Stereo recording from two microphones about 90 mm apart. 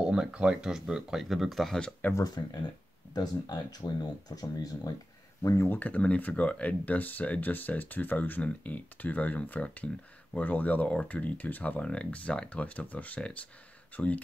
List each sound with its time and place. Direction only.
0.0 s speech: 10° right (ahead or behind)
2.1 s speech: 45° left (ahead or behind)
5.4 s speech: 30° left (ahead or behind)
5.8 s speech: 15° left (ahead or behind)